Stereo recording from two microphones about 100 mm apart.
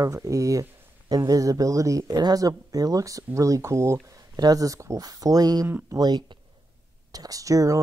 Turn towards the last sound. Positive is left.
turn(degrees=-35)  # may be behind; listen again after turning